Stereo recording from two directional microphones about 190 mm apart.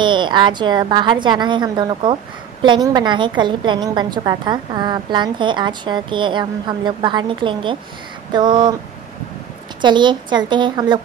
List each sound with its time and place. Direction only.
0.0 s a woman's voice: 25° right (ahead or behind)
9.8 s a woman's voice: 25° right (ahead or behind)